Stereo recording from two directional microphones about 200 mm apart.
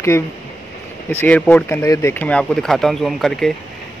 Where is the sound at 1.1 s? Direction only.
10° left (ahead or behind).